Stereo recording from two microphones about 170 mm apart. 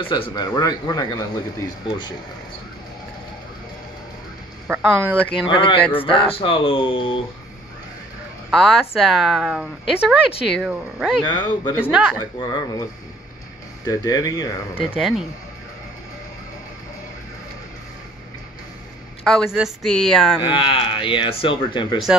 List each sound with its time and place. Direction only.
0.0 s speech: 30° left (ahead or behind)
4.6 s speech: 10° right (ahead or behind)
5.5 s speech: 30° left (ahead or behind)
8.5 s speech: centre (ahead or behind)
11.1 s speech: 25° left (ahead or behind)
11.8 s speech: 5° right (ahead or behind)
12.2 s speech: 25° left (ahead or behind)
13.8 s speech: 20° left (ahead or behind)
15.0 s speech: 5° right (ahead or behind)
19.2 s speech: centre (ahead or behind)
20.3 s speech: 30° left (ahead or behind)